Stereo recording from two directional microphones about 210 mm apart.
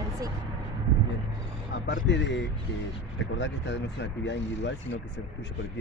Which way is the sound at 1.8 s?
55° left (ahead or behind).